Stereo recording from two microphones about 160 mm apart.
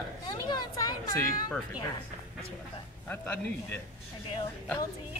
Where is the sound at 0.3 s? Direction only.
25° left (ahead or behind).